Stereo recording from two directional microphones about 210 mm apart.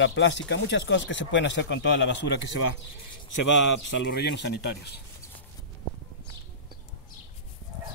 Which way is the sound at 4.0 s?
55° left (ahead or behind).